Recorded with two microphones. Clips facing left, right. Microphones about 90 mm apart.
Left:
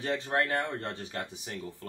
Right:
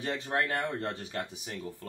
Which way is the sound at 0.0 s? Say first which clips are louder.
Left 2 dB; 35° left (ahead or behind).